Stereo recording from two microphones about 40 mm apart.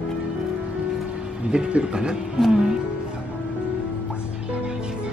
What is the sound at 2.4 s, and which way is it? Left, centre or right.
Speech, centre.